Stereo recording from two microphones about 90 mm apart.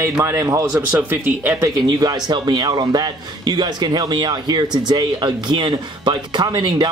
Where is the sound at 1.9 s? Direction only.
50° right (ahead or behind).